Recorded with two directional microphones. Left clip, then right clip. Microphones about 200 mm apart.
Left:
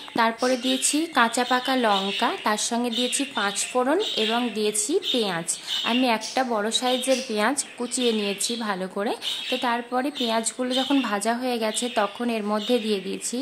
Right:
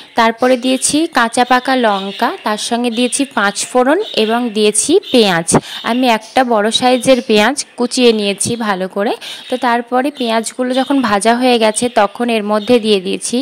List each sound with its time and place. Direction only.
0.1 s speech: 40° right (ahead or behind)